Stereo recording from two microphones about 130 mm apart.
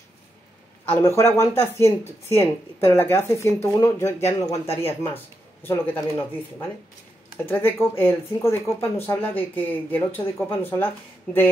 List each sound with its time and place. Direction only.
0.8 s speech: 20° left (ahead or behind)